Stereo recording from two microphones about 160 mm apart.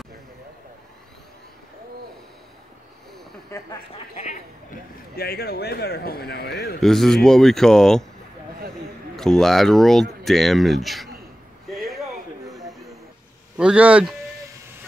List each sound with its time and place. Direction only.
3.5 s speech: 20° left (ahead or behind)
4.1 s speech: 45° left (ahead or behind)
5.1 s speech: 75° left (ahead or behind)
6.8 s a man's voice: centre (ahead or behind)
9.1 s a man's voice: centre (ahead or behind)
11.6 s a sound: centre (ahead or behind)
13.6 s speech: 5° right (ahead or behind)